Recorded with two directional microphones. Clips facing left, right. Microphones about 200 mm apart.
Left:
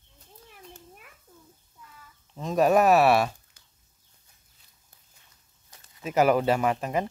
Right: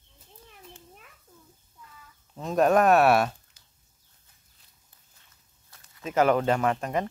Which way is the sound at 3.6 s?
50° left (ahead or behind).